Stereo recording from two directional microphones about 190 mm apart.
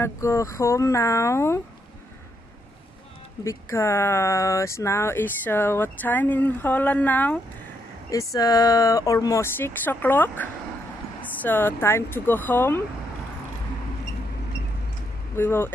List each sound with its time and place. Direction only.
0.0 s speech: 15° left (ahead or behind)
3.4 s speech: 15° left (ahead or behind)
15.3 s speech: 10° left (ahead or behind)